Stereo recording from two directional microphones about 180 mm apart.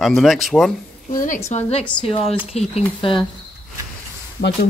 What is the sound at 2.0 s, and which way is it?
Speech, 35° left (ahead or behind).